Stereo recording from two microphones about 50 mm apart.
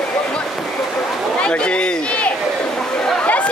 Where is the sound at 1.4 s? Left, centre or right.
Centre.